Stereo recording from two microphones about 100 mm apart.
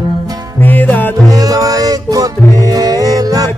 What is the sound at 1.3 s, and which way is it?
Music, 40° right (ahead or behind).